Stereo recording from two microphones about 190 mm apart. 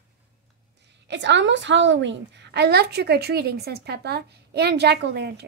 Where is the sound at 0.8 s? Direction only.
70° right (ahead or behind).